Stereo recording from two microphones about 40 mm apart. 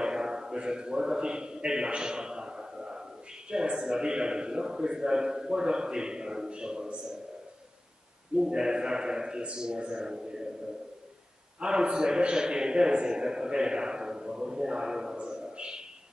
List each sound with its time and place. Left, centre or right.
0.0 s a man's voice: centre
8.5 s a man's voice: centre
11.6 s a man's voice: right
15.1 s a sound: right